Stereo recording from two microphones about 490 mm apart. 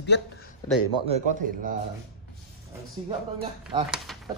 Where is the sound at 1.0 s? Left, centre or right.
Centre.